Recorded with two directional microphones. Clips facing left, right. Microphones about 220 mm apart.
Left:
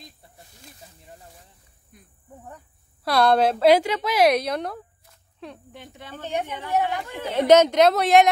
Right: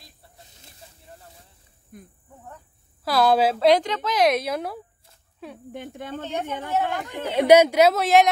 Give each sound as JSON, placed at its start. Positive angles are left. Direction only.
{"t": 1.9, "sound": "speech", "side_deg": -50}
{"t": 3.0, "sound": "a woman's voice", "side_deg": 0}
{"t": 5.7, "sound": "speech", "side_deg": -50}
{"t": 7.1, "sound": "speech", "side_deg": -10}